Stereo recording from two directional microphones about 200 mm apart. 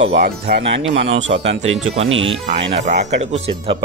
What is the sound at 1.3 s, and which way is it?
Speech, 50° right (ahead or behind).